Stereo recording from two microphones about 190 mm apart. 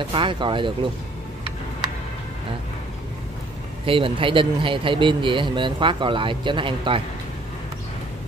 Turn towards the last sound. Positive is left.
turn(degrees=-25)  # may be behind; listen again after turning